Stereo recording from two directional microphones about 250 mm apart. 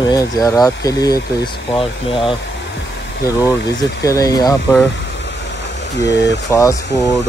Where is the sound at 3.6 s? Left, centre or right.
Centre.